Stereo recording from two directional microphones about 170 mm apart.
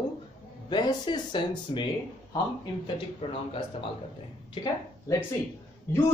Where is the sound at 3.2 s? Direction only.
35° left (ahead or behind).